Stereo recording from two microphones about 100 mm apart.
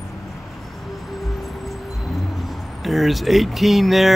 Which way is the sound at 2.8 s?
Centre (ahead or behind).